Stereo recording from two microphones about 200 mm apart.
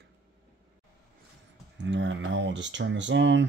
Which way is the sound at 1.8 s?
65° right (ahead or behind).